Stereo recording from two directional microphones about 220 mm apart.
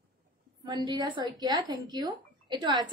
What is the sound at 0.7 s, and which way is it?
Speech, 20° right (ahead or behind).